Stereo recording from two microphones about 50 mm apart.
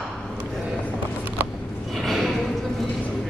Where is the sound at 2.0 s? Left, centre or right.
Centre.